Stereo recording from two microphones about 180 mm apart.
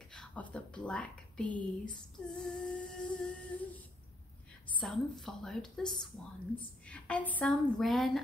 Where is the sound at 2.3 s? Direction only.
5° left (ahead or behind).